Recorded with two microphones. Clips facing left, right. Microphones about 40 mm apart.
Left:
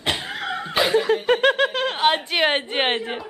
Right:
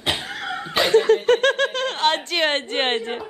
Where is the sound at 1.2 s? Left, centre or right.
Centre.